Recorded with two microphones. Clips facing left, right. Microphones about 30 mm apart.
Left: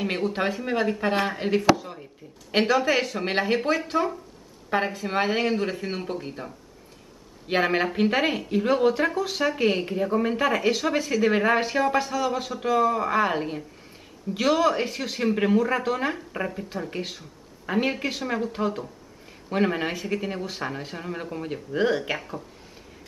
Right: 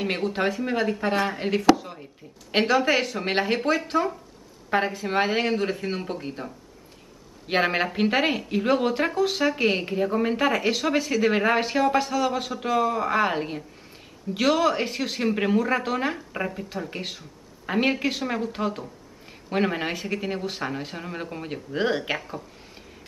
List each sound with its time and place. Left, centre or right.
0.0 s a woman's voice: centre
1.8 s a sound: centre
2.5 s a woman's voice: centre
8.8 s speech: right
9.1 s a woman's voice: centre
19.9 s speech: right
20.2 s a woman's voice: centre
21.7 s speech: right